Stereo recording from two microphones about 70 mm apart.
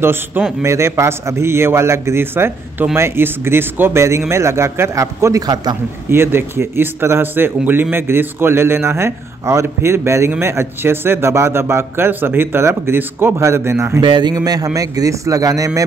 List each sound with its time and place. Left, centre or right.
0.0 s speech: right
0.7 s speech: right
6.0 s speech: right
14.0 s a man's voice: right